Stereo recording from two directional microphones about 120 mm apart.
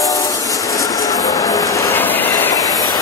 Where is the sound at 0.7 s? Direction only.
30° left (ahead or behind).